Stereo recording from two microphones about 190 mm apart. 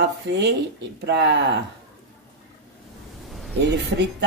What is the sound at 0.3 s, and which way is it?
Speech, 65° right (ahead or behind).